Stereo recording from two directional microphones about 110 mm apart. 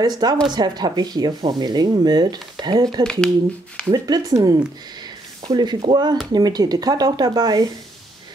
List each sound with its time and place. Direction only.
0.0 s speech: 40° right (ahead or behind)
3.0 s speech: 5° left (ahead or behind)
3.9 s speech: 35° right (ahead or behind)